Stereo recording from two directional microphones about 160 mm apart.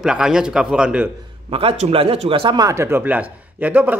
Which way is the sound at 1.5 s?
35° right (ahead or behind).